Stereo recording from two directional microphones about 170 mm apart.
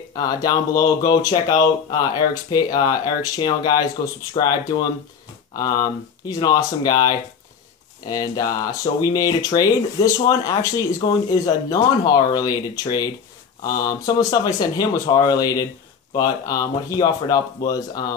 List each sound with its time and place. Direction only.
0.1 s speech: 20° left (ahead or behind)